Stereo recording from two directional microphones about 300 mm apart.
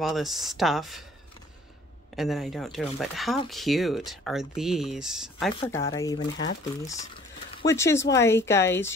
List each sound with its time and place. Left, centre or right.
0.0 s speech: centre
2.1 s speech: centre
5.6 s speech: centre
7.6 s speech: centre